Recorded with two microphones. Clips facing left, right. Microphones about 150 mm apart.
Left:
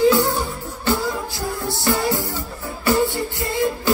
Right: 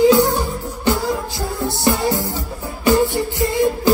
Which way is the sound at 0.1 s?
20° right (ahead or behind).